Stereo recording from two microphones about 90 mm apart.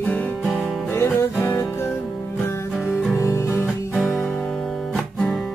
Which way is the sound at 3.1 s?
30° left (ahead or behind).